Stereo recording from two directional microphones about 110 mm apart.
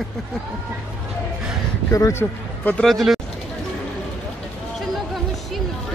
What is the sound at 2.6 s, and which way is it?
Speech, 15° left (ahead or behind).